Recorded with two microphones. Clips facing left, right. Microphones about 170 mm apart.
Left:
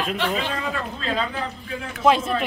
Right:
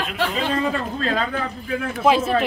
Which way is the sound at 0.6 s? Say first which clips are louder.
Right 6 dB; 45° right (ahead or behind).